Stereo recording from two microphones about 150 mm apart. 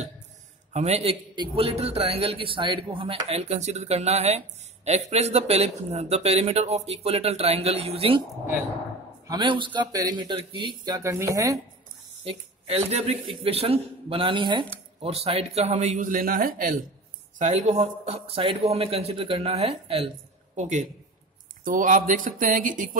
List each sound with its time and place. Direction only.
0.7 s speech: 45° right (ahead or behind)
1.3 s a man's voice: 35° right (ahead or behind)
9.3 s a man's voice: 35° right (ahead or behind)
11.0 s speech: 20° right (ahead or behind)
12.3 s a man's voice: 40° right (ahead or behind); by 16.8 s 70° right (ahead or behind)
17.4 s a man's voice: 50° right (ahead or behind)